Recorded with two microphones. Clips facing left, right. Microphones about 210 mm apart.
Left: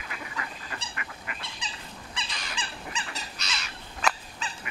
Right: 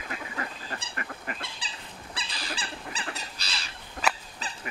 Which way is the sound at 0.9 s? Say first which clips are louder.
Right 3 dB; 40° right (ahead or behind).